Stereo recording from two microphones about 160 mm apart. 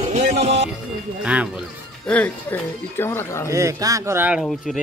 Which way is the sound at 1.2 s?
10° right (ahead or behind).